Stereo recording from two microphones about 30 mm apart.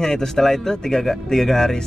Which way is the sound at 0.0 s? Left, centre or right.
Centre.